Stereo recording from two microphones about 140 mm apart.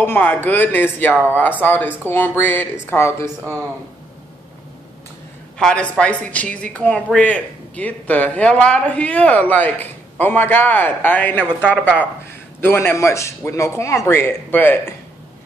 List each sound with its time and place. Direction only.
0.0 s a woman's voice: 10° left (ahead or behind)
5.6 s a woman's voice: 5° left (ahead or behind)